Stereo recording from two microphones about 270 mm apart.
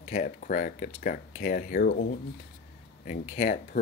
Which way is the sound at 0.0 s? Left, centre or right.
Left.